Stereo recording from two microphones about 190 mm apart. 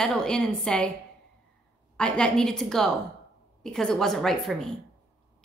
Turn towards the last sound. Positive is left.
turn(degrees=0)  # may be behind; listen again after turning